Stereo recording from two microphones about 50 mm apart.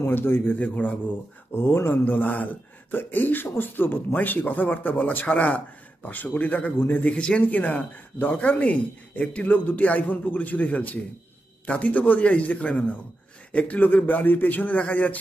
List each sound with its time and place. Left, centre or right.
0.0 s a man's voice: left
0.6 s speech: left
1.5 s speech: left
7.1 s a man's voice: left